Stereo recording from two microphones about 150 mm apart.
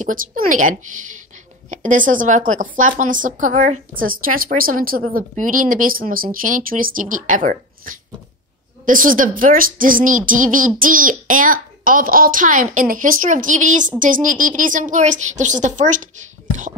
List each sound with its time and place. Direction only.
0.0 s a woman's voice: 65° right (ahead or behind)